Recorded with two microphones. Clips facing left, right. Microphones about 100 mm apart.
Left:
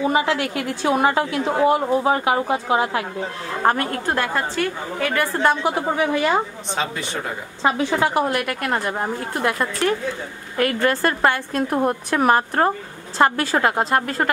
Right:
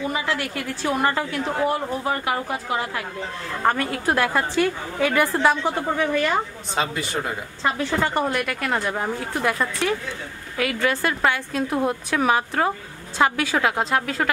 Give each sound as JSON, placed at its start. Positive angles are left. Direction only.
{"t": 0.0, "sound": "a woman's voice", "side_deg": 25}
{"t": 3.6, "sound": "a woman's voice", "side_deg": 5}
{"t": 5.6, "sound": "a woman's voice", "side_deg": 10}
{"t": 6.7, "sound": "speech", "side_deg": 0}
{"t": 7.6, "sound": "a woman's voice", "side_deg": 20}
{"t": 10.8, "sound": "a woman's voice", "side_deg": 45}
{"t": 14.2, "sound": "a woman's voice", "side_deg": 25}